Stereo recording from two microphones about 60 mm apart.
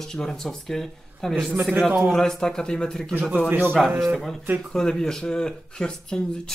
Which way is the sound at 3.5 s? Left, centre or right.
Right.